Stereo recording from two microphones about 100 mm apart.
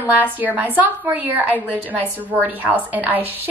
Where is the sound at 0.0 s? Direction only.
15° right (ahead or behind).